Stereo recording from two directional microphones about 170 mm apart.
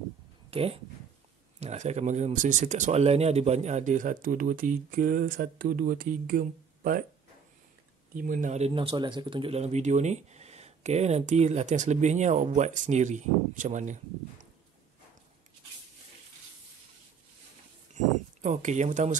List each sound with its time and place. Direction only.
0.5 s speech: 35° right (ahead or behind); by 7.0 s 55° right (ahead or behind)
8.1 s speech: 55° right (ahead or behind)
17.9 s speech: 45° right (ahead or behind)